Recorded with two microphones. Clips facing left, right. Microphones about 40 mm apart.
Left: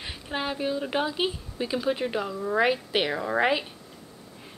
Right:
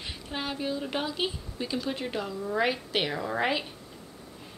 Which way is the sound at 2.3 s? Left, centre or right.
Left.